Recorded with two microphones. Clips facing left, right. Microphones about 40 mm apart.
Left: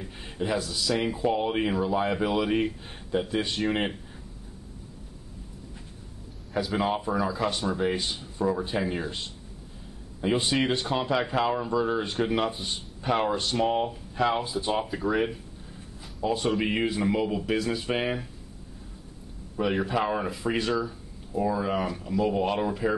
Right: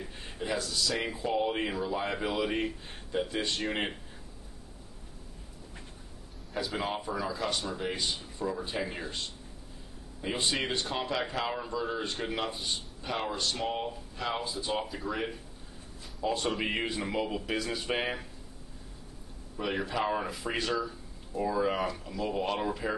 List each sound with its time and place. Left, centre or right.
0.2 s a man's voice: centre
0.9 s a man's voice: centre
1.2 s speech: centre
6.5 s a man's voice: centre
8.4 s speech: left
8.6 s speech: centre
10.2 s speech: centre
13.1 s speech: left
16.2 s a man's voice: centre
19.6 s a man's voice: centre